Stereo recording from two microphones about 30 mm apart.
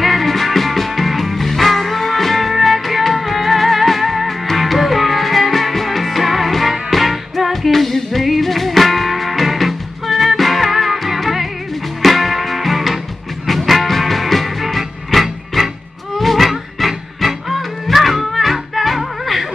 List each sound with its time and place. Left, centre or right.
0.0 s music: centre